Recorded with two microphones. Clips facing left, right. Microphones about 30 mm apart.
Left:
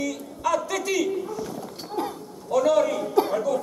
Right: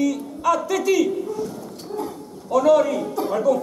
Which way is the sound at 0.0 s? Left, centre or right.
Centre.